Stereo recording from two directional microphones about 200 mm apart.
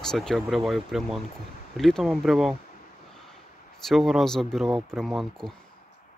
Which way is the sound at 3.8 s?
Centre (ahead or behind).